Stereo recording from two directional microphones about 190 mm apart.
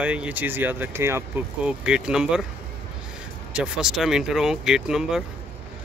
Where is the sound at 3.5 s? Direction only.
5° right (ahead or behind).